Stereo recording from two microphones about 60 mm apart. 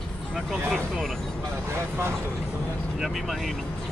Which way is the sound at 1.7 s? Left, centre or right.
Right.